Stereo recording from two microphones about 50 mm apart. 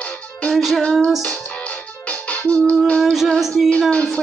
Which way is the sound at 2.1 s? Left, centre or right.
Left.